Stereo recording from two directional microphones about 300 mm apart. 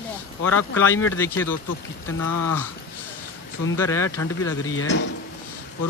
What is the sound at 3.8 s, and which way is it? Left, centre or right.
Speech, centre.